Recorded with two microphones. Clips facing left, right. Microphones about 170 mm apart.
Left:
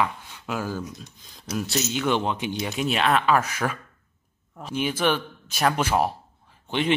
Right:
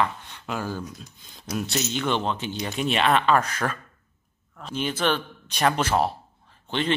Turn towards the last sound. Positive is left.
turn(degrees=10)  # may be behind; listen again after turning